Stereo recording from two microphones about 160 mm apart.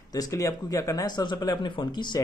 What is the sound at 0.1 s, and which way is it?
Speech, 20° left (ahead or behind).